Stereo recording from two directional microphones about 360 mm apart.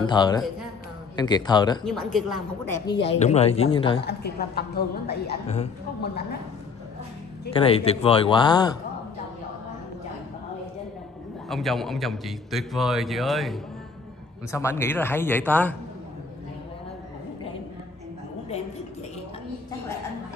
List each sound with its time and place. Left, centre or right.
0.0 s speech: centre
1.9 s speech: centre
4.0 s a woman's voice: left
7.5 s speech: centre
11.4 s a man's voice: centre